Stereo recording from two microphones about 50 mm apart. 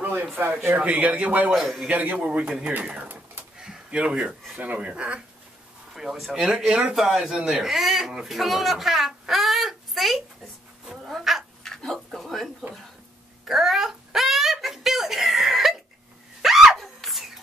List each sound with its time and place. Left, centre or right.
0.0 s speech: right
0.7 s speech: right
1.5 s speech: centre
1.9 s speech: right
3.0 s a sound: right
3.5 s a sound: centre
4.3 s speech: centre
4.6 s speech: right
5.9 s speech: centre
10.9 s cat: centre
11.6 s a sound: centre
13.5 s a sound: centre